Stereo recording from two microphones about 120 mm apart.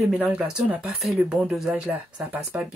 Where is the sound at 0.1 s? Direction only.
10° right (ahead or behind).